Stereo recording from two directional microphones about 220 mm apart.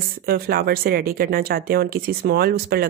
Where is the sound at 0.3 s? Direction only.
45° right (ahead or behind).